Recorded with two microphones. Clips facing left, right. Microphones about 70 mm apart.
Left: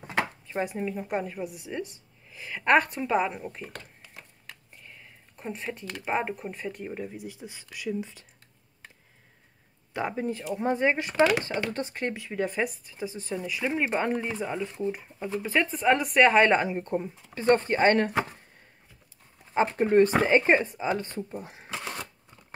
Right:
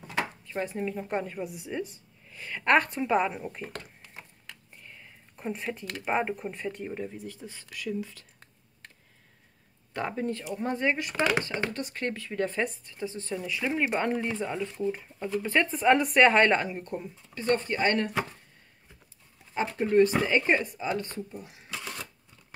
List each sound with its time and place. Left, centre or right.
0.5 s speech: centre
9.9 s speech: centre; by 12.0 s left
12.0 s speech: centre; by 18.4 s left
19.5 s speech: left
21.3 s speech: left
21.7 s a sound: left